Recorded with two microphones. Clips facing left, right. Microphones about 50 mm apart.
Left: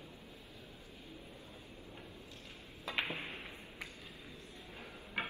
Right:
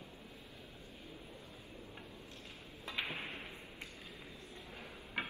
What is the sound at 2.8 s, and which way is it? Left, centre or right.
Arrow, left.